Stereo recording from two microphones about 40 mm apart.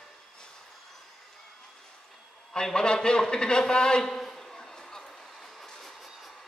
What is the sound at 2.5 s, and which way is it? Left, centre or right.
A man's voice, centre.